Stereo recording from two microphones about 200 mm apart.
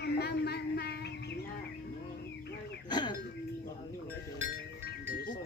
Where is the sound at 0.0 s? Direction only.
55° left (ahead or behind).